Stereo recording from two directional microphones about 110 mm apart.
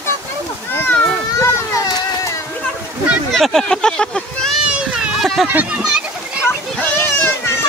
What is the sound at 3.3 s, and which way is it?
Speech, 5° left (ahead or behind).